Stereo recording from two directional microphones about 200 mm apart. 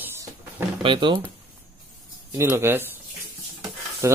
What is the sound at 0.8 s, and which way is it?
Speech, 25° right (ahead or behind).